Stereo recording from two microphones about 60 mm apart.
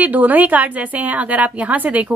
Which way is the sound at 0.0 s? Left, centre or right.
Right.